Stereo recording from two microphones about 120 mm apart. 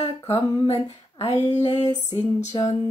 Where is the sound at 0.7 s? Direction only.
60° left (ahead or behind).